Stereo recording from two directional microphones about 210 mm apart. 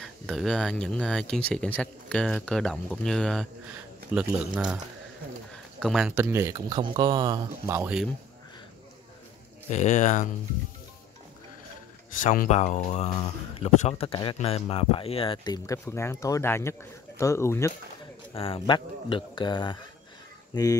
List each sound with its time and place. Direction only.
0.0 s speech: centre (ahead or behind)
5.8 s speech: centre (ahead or behind)
9.7 s speech: 35° left (ahead or behind)
12.2 s speech: 35° left (ahead or behind); by 17.7 s 15° left (ahead or behind)
18.3 s speech: 25° left (ahead or behind)